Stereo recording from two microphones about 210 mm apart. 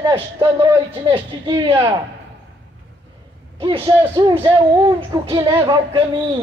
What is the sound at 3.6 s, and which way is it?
A man's voice, 25° right (ahead or behind).